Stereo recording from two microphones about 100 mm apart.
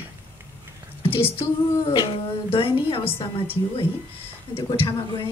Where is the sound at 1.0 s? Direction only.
65° left (ahead or behind).